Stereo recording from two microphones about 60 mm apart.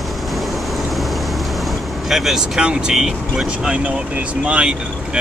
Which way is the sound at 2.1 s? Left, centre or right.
Centre.